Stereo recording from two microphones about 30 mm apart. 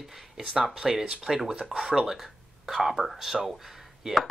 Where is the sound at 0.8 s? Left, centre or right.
Centre.